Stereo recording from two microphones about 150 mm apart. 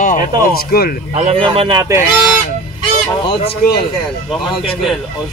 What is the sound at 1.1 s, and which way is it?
Speech, 45° right (ahead or behind).